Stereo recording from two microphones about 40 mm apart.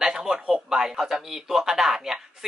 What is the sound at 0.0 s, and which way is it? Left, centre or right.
Speech, centre.